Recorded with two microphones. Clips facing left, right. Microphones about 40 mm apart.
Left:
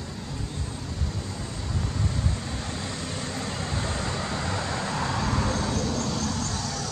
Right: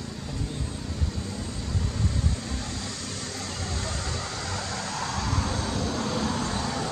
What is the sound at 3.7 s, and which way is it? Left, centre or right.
Vehicle, left.